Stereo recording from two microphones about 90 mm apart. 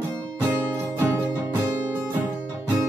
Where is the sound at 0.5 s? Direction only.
30° right (ahead or behind).